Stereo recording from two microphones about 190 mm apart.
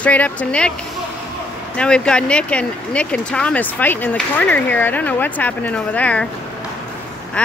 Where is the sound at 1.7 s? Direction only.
5° left (ahead or behind).